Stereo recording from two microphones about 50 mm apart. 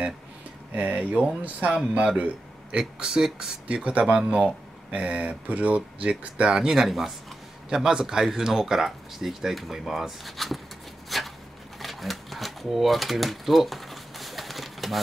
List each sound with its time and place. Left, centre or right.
0.7 s a man's voice: right
2.8 s speech: centre
3.6 s speech: right
4.0 s speech: centre
6.5 s speech: centre
11.1 s a sound: centre
11.8 s typewriter: centre